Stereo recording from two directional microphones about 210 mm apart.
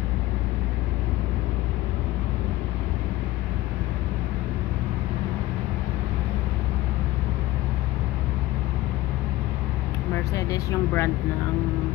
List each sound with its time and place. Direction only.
10.3 s speech: 15° left (ahead or behind)